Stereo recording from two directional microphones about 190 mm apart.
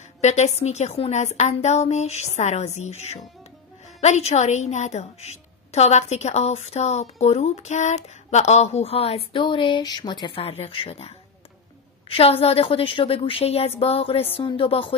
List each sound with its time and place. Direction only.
0.2 s a woman's voice: 35° left (ahead or behind)